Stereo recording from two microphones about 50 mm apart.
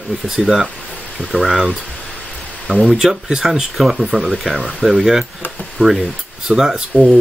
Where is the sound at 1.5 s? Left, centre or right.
Centre.